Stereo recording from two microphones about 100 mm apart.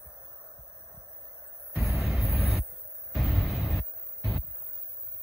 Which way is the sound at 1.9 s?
30° right (ahead or behind).